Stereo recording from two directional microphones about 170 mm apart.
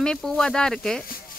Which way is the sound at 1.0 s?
60° left (ahead or behind).